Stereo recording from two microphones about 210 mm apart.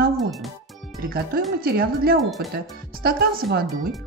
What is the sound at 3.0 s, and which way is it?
Speech, 45° right (ahead or behind).